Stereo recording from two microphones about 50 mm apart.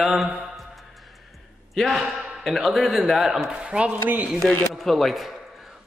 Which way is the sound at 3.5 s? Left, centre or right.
Right.